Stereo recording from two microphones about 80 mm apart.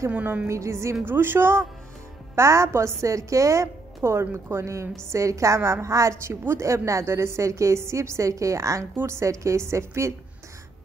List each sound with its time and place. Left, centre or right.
0.1 s speech: right
0.5 s a woman's voice: right
1.0 s a woman's voice: right